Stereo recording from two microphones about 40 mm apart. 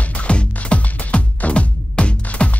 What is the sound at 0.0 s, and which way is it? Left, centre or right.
Music, left.